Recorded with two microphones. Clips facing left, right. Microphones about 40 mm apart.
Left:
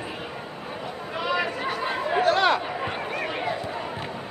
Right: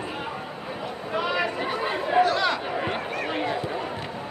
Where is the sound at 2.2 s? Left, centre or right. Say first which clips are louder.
Left 3 dB; left.